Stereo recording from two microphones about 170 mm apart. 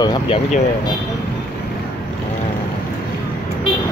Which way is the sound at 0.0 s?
25° left (ahead or behind).